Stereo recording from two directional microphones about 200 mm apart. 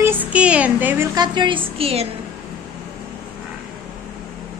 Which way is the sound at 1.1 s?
25° right (ahead or behind).